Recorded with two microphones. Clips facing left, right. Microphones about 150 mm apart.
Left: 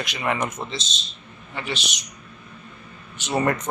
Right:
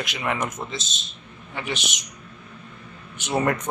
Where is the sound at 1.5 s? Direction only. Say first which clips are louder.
Even; 15° right (ahead or behind).